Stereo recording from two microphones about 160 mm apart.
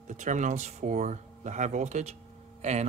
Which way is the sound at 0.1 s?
50° right (ahead or behind).